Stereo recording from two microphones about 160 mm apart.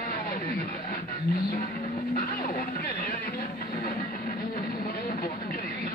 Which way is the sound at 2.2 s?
65° left (ahead or behind).